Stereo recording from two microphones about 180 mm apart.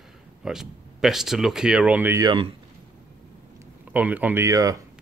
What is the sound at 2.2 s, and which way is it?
Speech, 30° right (ahead or behind).